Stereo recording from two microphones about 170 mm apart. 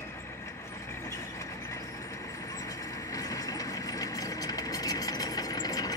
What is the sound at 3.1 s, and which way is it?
Engine, 20° left (ahead or behind).